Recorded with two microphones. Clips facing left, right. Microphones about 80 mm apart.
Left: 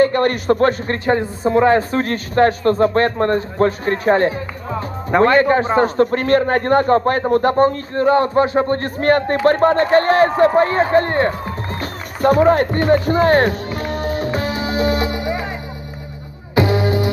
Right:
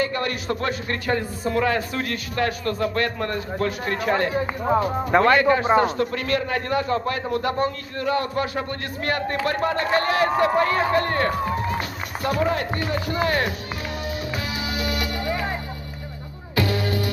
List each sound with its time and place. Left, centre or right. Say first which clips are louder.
0.0 s a man's voice: left 10 dB; left
1.0 s a man's voice: left 8 dB; left
12.2 s speech: left 10 dB; left
13.1 s music: left 9 dB; left
16.5 s music: left 7 dB; left